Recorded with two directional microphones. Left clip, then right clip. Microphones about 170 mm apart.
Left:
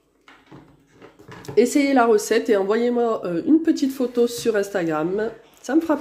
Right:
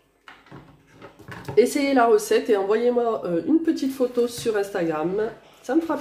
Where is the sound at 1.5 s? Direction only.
40° left (ahead or behind).